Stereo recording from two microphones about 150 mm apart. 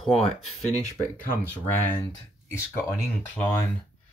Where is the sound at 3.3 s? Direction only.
10° left (ahead or behind).